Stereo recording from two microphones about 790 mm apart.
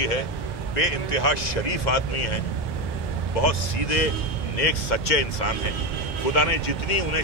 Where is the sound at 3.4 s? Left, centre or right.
Left.